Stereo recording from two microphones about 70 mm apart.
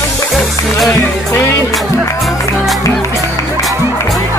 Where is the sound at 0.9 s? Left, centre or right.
Left.